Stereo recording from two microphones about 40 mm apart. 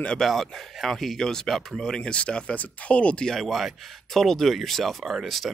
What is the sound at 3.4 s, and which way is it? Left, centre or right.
Speech, centre.